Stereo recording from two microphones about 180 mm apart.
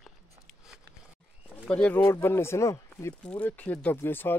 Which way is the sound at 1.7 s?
5° left (ahead or behind).